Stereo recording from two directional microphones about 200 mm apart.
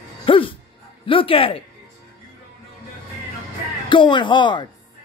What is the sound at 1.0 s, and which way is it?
Speech, 25° left (ahead or behind).